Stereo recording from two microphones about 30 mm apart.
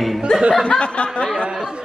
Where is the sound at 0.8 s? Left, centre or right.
Left.